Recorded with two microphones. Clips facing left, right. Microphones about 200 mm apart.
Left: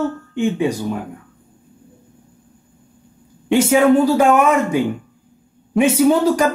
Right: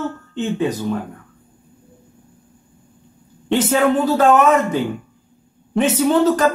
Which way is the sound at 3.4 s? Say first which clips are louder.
Left 3 dB; 10° left (ahead or behind).